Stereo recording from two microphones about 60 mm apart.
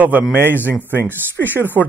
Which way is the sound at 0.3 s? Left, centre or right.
Right.